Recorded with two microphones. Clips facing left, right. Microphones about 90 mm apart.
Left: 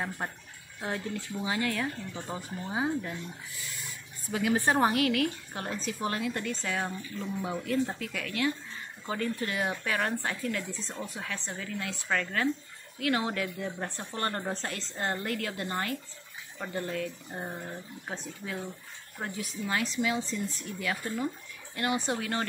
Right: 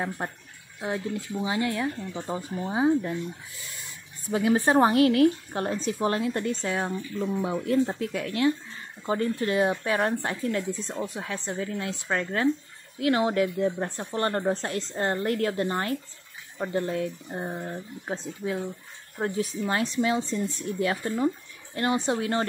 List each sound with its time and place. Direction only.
0.2 s a woman's voice: 25° right (ahead or behind)
0.7 s speech: 10° right (ahead or behind)
1.1 s a woman's voice: 25° right (ahead or behind)
19.2 s a woman's voice: 35° right (ahead or behind)